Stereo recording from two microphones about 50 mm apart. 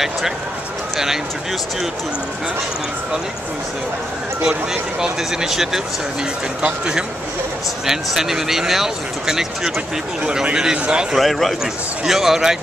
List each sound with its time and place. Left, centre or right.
0.9 s speech: centre
5.0 s speech: centre
7.8 s speech: centre
11.1 s a man's voice: centre